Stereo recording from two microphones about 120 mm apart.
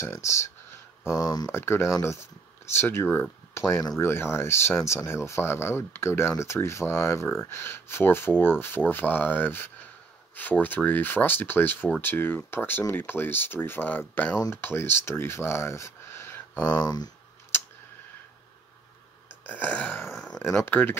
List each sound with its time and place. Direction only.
0.0 s speech: 25° left (ahead or behind)
16.6 s speech: 35° left (ahead or behind)
17.5 s a sound: 20° left (ahead or behind)
19.4 s speech: 15° left (ahead or behind)